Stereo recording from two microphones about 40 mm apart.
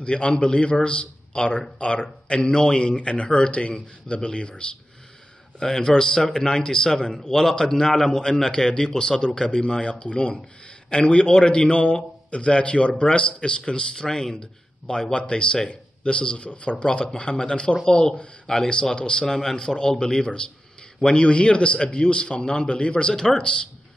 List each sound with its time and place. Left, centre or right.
0.0 s a man's voice: left
5.6 s a man's voice: centre
8.5 s a man's voice: centre
9.8 s a man's voice: left
16.8 s a man's voice: centre
23.1 s a man's voice: centre